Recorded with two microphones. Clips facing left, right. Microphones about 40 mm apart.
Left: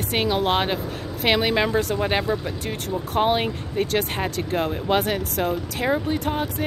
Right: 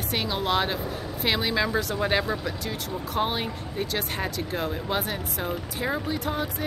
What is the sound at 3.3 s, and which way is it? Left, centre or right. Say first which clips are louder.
Speech: left 6 dB; left.